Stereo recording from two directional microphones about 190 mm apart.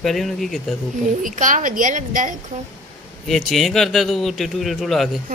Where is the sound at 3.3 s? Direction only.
Centre (ahead or behind).